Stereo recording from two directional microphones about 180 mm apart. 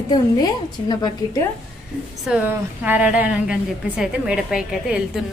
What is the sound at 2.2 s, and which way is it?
A woman's voice, 5° right (ahead or behind).